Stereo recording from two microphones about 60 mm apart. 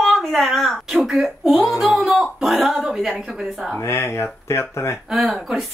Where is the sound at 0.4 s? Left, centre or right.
Centre.